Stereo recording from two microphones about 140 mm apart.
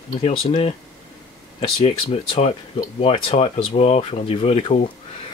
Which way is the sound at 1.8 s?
45° left (ahead or behind).